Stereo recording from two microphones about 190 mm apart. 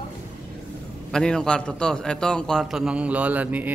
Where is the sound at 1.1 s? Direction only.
5° left (ahead or behind).